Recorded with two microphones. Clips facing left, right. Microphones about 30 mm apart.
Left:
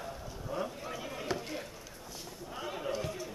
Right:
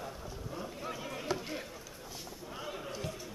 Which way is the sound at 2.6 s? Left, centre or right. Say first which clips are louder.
Left 5 dB; centre.